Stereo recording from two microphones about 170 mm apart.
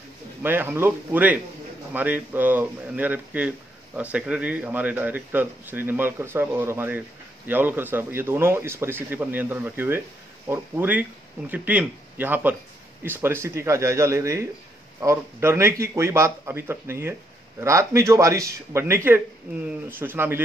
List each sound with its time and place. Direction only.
0.4 s speech: 10° right (ahead or behind)